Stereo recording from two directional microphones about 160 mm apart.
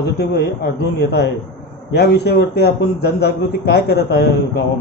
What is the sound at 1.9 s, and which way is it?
A man's voice, 90° left.